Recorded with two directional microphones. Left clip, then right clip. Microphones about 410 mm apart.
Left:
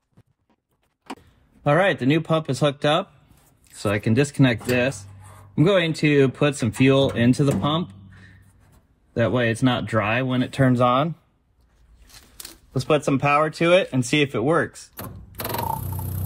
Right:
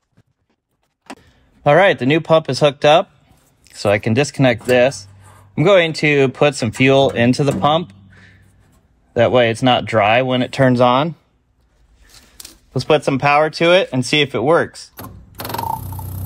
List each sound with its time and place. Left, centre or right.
1.6 s speech: centre
9.1 s speech: centre
12.7 s speech: centre
15.0 s a sound: centre